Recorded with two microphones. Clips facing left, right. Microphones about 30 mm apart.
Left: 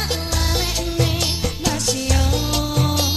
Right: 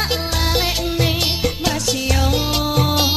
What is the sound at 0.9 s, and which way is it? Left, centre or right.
Music, right.